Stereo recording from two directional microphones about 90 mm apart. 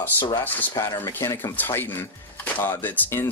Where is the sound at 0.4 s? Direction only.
20° left (ahead or behind).